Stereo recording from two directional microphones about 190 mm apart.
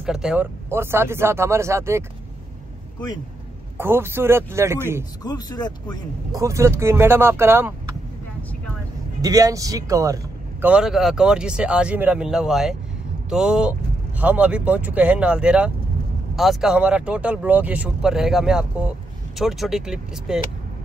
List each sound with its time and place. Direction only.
0.0 s speech: 5° right (ahead or behind)
3.7 s speech: 10° right (ahead or behind)
5.2 s speech: 20° left (ahead or behind)
6.3 s speech: 15° right (ahead or behind)
9.2 s speech: 20° right (ahead or behind)
10.7 s speech: centre (ahead or behind)